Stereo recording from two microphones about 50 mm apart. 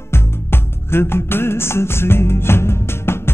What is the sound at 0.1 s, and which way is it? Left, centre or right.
Music, left.